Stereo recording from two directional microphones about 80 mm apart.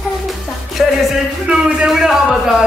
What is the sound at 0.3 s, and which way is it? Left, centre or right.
Music, centre.